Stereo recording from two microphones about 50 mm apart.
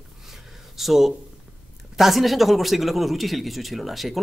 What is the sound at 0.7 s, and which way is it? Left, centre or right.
A man's voice, centre.